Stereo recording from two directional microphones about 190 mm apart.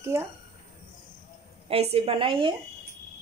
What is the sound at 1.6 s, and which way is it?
Speech, 30° right (ahead or behind).